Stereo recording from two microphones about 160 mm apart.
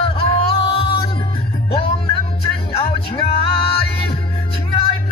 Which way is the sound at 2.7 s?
40° left (ahead or behind).